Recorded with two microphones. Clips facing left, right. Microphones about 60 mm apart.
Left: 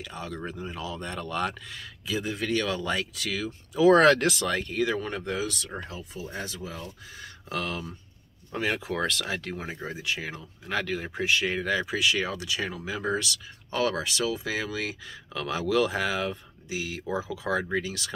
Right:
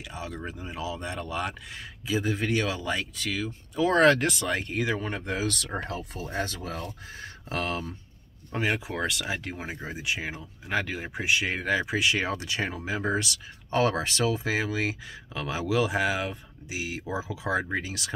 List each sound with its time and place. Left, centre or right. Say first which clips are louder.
0.1 s speech: even; centre
1.7 s speech: right 2 dB; right
2.6 s speech: left 1 dB; centre
4.5 s speech: left 1 dB; right
5.7 s speech: right 4 dB; right
7.2 s speech: right 1 dB; right
8.5 s speech: even; centre